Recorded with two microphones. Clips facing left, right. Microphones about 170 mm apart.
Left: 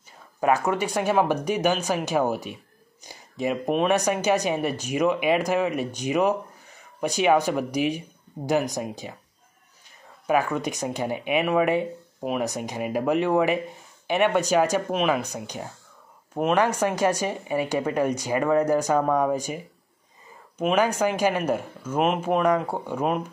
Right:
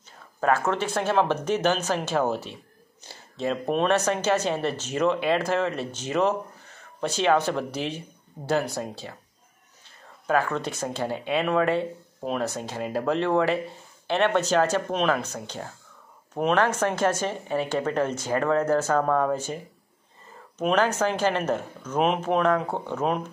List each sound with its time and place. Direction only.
0.4 s speech: 15° left (ahead or behind)
10.2 s speech: 15° left (ahead or behind)